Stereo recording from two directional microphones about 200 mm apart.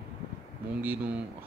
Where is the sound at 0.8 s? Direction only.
10° right (ahead or behind).